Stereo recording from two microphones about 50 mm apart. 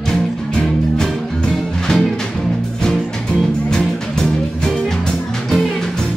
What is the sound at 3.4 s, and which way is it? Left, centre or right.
Music, centre.